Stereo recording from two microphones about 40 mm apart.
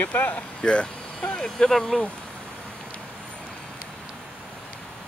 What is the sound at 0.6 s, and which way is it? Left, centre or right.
Speech, left.